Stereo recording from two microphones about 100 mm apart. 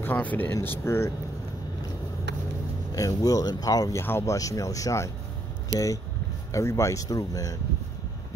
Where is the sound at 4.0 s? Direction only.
25° left (ahead or behind).